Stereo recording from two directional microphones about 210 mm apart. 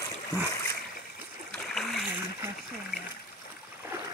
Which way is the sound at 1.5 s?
Centre (ahead or behind).